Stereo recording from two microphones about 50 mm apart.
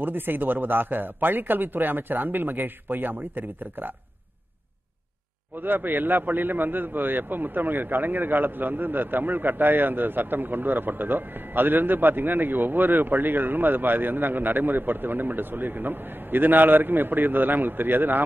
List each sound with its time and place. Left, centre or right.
0.0 s a man's voice: right
5.6 s a man's voice: right